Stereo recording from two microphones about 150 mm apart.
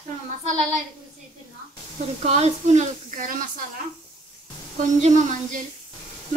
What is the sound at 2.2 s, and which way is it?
Speech, 45° right (ahead or behind).